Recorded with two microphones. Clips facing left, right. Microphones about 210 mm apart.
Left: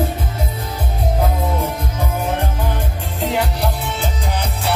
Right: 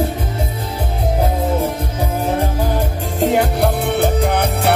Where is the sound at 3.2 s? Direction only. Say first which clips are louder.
Right 5 dB; 50° right (ahead or behind).